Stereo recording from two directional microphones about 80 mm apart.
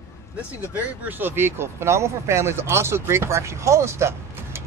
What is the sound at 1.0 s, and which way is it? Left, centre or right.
Speech, right.